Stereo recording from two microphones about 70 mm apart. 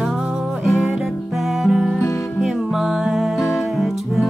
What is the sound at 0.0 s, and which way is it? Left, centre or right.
Music, centre.